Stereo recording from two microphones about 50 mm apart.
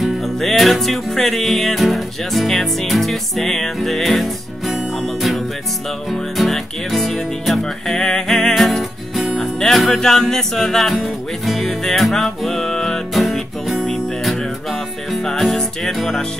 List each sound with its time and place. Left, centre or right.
0.0 s music: centre